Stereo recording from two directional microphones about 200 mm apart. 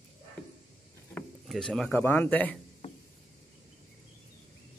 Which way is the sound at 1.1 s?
5° left (ahead or behind).